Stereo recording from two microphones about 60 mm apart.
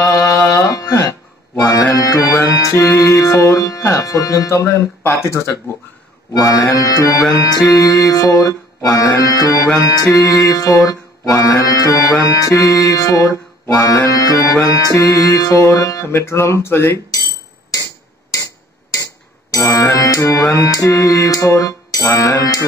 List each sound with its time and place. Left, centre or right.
0.0 s music: left
0.7 s music: left
5.0 s speech: left
6.3 s music: left
7.3 s music: left
16.1 s speech: left
19.5 s music: left
20.1 s music: left
22.4 s music: left